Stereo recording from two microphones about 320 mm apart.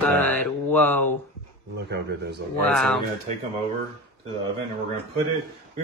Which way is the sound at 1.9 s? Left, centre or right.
Right.